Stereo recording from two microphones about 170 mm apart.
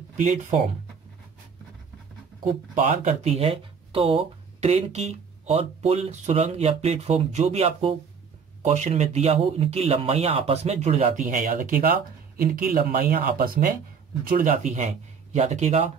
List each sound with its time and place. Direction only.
2.7 s speech: 45° right (ahead or behind)